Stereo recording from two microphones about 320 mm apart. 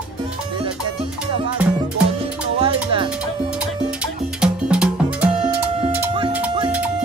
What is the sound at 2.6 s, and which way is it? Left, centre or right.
Music, centre.